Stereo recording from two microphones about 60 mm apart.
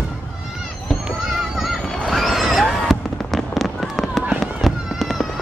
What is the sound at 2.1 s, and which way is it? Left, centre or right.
Fireworks, centre.